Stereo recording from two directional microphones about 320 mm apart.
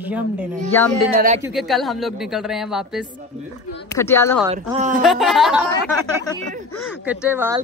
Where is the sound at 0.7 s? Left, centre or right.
Centre.